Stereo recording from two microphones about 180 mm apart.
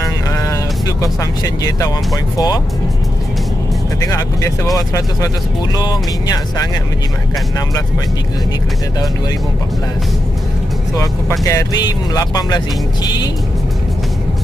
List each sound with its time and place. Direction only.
0.0 s music: 20° left (ahead or behind)
2.3 s speech: 20° left (ahead or behind)
4.0 s speech: 15° left (ahead or behind)
11.0 s speech: 15° left (ahead or behind)